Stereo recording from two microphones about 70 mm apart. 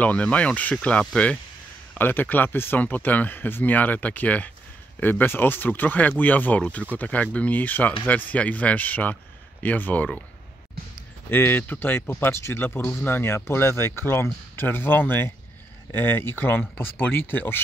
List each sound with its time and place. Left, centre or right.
0.0 s speech: centre
2.0 s speech: left
11.2 s speech: left